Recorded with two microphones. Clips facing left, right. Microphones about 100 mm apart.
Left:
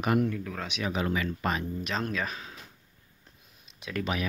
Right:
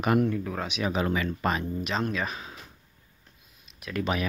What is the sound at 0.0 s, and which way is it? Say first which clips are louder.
Speech: right 2 dB; 55° right (ahead or behind).